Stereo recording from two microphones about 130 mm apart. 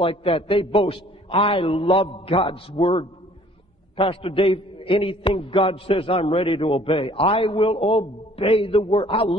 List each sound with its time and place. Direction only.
0.0 s a man's voice: 45° left (ahead or behind)